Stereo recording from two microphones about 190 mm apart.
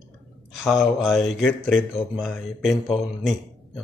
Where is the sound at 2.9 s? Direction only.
Centre (ahead or behind).